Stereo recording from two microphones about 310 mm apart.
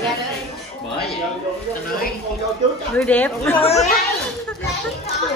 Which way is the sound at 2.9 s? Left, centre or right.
Centre.